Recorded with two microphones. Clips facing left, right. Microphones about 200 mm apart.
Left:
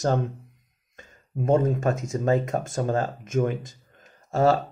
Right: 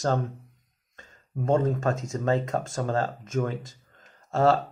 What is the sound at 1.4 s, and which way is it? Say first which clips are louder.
Speech: left 2 dB; 15° left (ahead or behind).